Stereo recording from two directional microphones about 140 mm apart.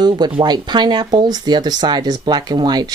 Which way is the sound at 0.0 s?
30° right (ahead or behind).